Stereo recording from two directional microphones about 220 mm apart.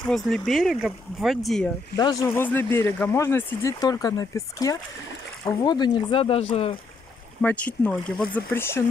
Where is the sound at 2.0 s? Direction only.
15° left (ahead or behind).